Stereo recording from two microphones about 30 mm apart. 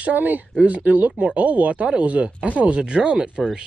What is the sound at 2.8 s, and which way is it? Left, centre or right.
Speech, right.